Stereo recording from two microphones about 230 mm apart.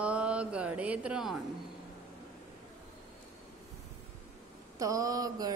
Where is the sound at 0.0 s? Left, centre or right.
Centre.